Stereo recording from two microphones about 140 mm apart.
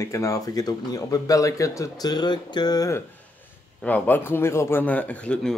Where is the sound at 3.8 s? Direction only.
10° left (ahead or behind).